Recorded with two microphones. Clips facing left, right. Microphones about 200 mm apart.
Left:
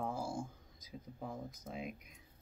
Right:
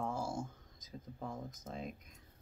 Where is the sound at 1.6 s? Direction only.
10° left (ahead or behind).